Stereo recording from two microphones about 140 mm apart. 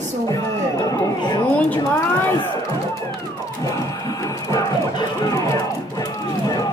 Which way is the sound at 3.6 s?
25° left (ahead or behind).